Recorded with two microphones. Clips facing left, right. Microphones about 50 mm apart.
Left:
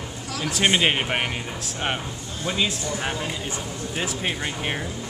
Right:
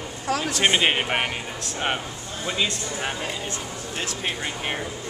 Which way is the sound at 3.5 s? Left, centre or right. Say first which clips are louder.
Left 2 dB; centre.